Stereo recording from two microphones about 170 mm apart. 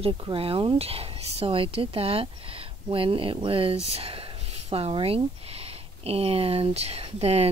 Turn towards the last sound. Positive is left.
turn(degrees=-35)  # may be behind; listen again after turning